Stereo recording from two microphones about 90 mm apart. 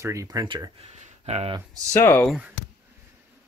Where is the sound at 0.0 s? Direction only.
35° right (ahead or behind).